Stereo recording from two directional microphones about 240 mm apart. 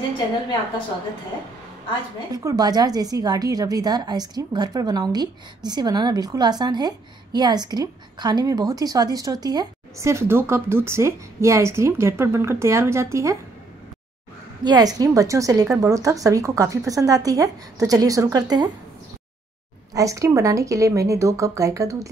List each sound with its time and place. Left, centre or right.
2.3 s a woman's voice: centre
14.6 s a woman's voice: centre
19.9 s a woman's voice: centre